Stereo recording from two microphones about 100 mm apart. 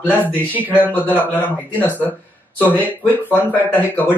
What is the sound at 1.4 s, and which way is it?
Speech, 15° left (ahead or behind).